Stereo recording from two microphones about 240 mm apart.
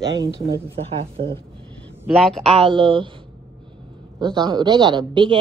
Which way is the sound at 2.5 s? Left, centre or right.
Right.